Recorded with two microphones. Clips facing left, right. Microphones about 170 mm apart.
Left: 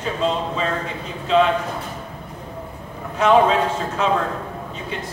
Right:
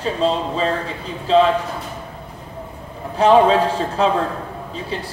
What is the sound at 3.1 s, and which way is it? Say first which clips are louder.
A man's voice: right 3 dB; 30° right (ahead or behind).